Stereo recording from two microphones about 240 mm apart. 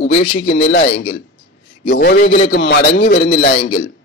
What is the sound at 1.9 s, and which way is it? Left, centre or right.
A man's voice, left.